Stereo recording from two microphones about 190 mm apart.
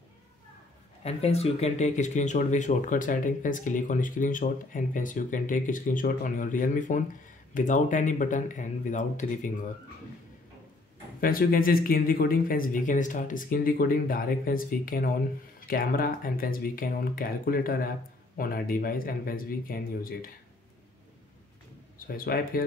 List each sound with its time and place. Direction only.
1.0 s speech: 35° left (ahead or behind)
11.1 s speech: 50° left (ahead or behind)
21.9 s speech: 50° left (ahead or behind)